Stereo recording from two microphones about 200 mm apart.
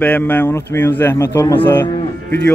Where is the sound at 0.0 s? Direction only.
10° left (ahead or behind).